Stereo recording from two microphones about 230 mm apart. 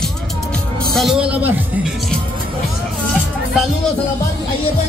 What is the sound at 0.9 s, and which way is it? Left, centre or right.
Speech, centre.